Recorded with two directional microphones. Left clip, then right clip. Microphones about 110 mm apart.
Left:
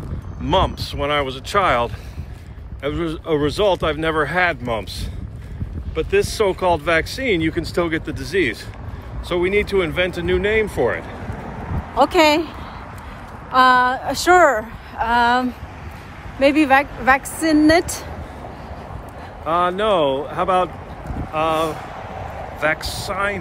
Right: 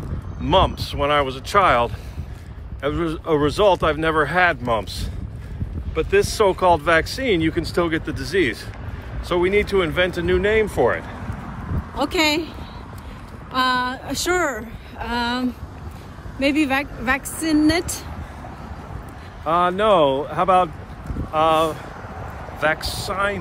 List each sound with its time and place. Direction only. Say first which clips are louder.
0.5 s speech: right 1 dB; 5° right (ahead or behind)
4.5 s speech: right 2 dB; 20° right (ahead or behind)
5.9 s speech: even; 25° right (ahead or behind); by 8.0 s centre (ahead or behind)
8.0 s speech: left 1 dB; 15° right (ahead or behind)
11.9 s a woman's voice: left 6 dB; 40° left (ahead or behind)
13.5 s a woman's voice: left 7 dB; 40° left (ahead or behind)
19.4 s speech: even; centre (ahead or behind)
19.8 s speech: right 1 dB; 15° right (ahead or behind)
22.6 s speech: even; 5° right (ahead or behind)